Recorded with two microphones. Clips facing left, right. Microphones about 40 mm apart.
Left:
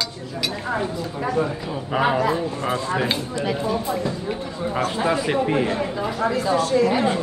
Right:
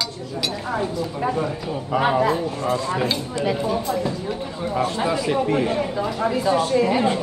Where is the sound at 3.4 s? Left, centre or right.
Centre.